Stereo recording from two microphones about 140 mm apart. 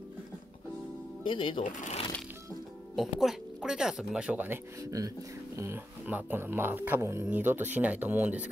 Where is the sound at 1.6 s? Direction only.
65° left (ahead or behind).